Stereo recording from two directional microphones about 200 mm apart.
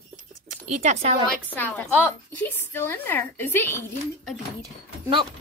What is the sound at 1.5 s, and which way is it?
Speech, 10° left (ahead or behind).